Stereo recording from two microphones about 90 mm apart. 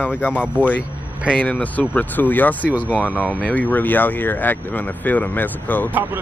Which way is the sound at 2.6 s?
15° right (ahead or behind).